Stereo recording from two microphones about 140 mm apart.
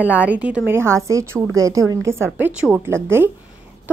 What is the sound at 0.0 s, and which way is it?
A woman's voice, 10° right (ahead or behind).